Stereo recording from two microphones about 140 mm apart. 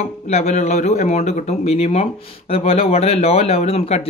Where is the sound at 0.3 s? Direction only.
50° left (ahead or behind).